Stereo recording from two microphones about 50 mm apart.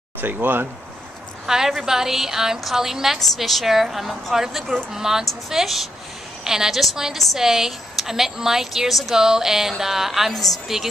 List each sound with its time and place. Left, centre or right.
0.2 s speech: right
1.4 s a woman's voice: centre